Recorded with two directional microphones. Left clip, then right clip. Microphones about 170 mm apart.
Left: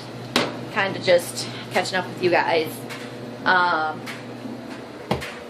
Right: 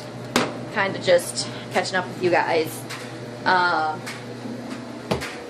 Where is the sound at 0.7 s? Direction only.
Centre (ahead or behind).